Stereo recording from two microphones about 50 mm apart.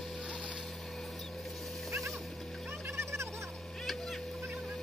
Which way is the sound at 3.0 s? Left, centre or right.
Right.